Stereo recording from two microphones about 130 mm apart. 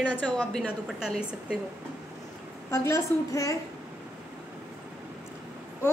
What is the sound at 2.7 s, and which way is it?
Speech, 20° left (ahead or behind).